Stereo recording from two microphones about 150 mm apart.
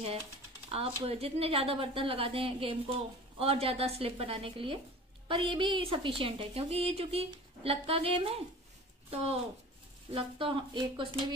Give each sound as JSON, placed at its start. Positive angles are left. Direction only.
{"t": 0.7, "sound": "a woman's voice", "side_deg": -40}